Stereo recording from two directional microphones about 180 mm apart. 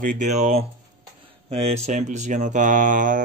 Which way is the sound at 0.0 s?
45° right (ahead or behind).